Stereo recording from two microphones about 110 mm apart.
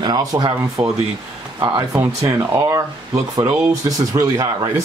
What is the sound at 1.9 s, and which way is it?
Speech, 25° right (ahead or behind).